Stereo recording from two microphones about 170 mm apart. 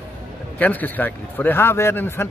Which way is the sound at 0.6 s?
10° left (ahead or behind).